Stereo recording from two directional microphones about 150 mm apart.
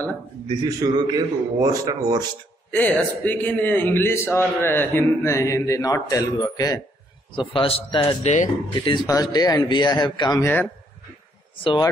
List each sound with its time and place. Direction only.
0.7 s a man's voice: 25° right (ahead or behind)
2.7 s a man's voice: 10° left (ahead or behind); by 6.8 s 25° left (ahead or behind)
7.3 s a man's voice: 35° left (ahead or behind)
8.2 s speech: 50° left (ahead or behind)
8.7 s speech: 30° left (ahead or behind)
10.4 s a man's voice: 10° left (ahead or behind)